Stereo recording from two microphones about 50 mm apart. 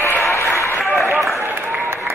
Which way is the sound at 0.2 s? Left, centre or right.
Left.